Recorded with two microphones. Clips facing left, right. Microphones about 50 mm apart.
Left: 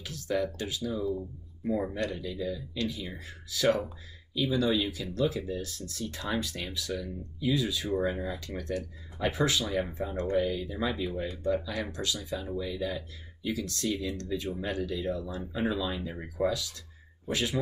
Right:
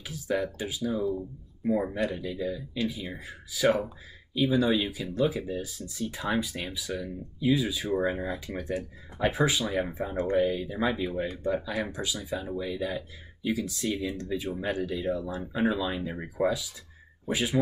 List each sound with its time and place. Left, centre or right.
0.0 s speech: centre